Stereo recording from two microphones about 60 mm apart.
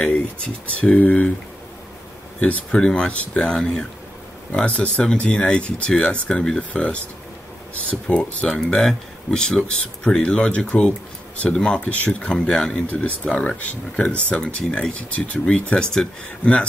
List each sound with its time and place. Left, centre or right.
0.7 s speech: left
2.4 s speech: left
8.1 s speech: centre